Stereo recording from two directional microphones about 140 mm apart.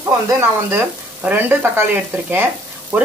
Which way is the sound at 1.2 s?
15° right (ahead or behind).